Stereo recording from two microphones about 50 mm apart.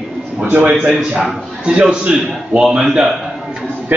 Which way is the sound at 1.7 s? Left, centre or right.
Right.